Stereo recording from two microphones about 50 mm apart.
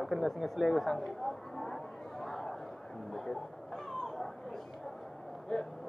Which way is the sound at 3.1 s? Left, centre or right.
Centre.